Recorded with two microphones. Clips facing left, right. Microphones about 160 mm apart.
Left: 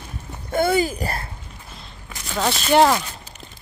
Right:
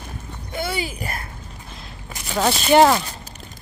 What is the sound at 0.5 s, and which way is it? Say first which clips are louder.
Speech: left 8 dB; 45° left (ahead or behind).